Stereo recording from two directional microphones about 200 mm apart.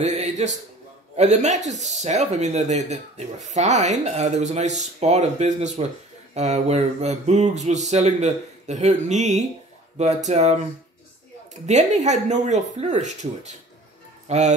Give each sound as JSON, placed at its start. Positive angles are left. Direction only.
{"t": 0.0, "sound": "a sound", "side_deg": -35}
{"t": 1.1, "sound": "speech", "side_deg": -35}
{"t": 11.6, "sound": "speech", "side_deg": -35}